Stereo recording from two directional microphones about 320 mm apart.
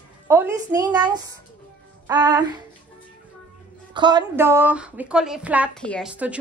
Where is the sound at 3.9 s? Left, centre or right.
Centre.